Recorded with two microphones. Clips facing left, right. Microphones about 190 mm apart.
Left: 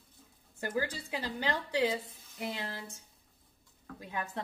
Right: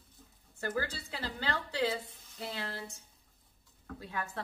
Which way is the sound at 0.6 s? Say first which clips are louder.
Left 1 dB; 15° left (ahead or behind).